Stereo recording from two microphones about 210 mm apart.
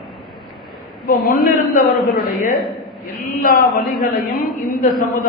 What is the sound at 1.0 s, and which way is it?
Speech, 45° left (ahead or behind).